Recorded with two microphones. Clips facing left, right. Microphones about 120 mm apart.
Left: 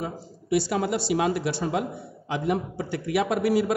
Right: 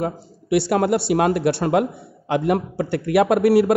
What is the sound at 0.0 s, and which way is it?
Speech, 65° right (ahead or behind).